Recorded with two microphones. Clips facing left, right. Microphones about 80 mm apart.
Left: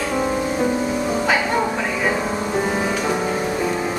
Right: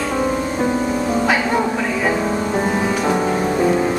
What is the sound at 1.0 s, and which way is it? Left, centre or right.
Music, centre.